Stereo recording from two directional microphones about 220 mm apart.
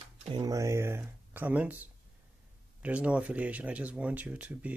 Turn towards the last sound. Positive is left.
turn(degrees=-5)  # may be behind; listen again after turning